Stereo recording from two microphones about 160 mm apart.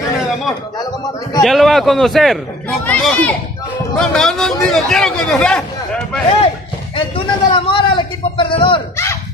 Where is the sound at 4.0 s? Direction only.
5° left (ahead or behind).